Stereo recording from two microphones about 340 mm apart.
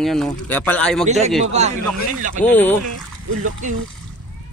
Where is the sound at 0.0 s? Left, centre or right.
Centre.